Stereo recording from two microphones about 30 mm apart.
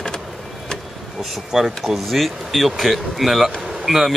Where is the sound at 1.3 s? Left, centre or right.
Centre.